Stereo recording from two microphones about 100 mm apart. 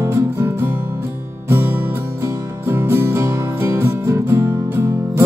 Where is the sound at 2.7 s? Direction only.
25° right (ahead or behind).